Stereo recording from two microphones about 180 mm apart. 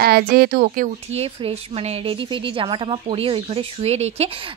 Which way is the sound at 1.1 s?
35° right (ahead or behind).